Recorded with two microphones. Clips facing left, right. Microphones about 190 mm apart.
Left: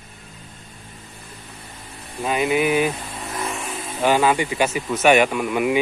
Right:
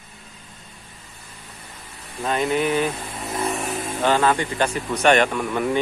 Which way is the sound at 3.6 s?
45° right (ahead or behind).